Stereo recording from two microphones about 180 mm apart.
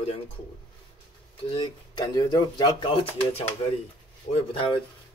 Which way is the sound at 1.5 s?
25° left (ahead or behind).